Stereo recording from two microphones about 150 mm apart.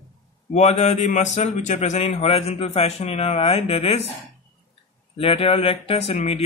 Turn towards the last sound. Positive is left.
turn(degrees=45)  # may be behind; listen again after turning